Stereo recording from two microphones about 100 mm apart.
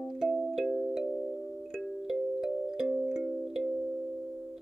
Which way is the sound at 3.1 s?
Centre (ahead or behind).